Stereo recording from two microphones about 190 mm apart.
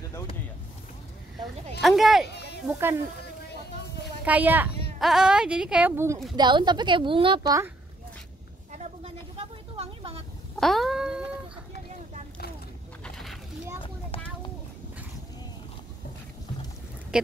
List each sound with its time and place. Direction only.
1.8 s speech: centre (ahead or behind)
2.2 s a sound: 60° left (ahead or behind)
2.6 s a woman's voice: 10° right (ahead or behind)
4.2 s a woman's voice: 10° right (ahead or behind)
6.3 s a woman's voice: 20° right (ahead or behind)
8.7 s a sound: 35° right (ahead or behind)
10.6 s speech: centre (ahead or behind)
13.0 s a sound: centre (ahead or behind)
13.8 s vehicle: 25° left (ahead or behind)
17.1 s speech: 5° right (ahead or behind)